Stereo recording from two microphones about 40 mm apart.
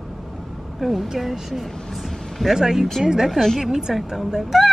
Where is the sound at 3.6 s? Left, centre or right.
Centre.